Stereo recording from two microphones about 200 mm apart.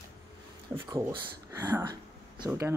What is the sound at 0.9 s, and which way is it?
Speech, 20° right (ahead or behind).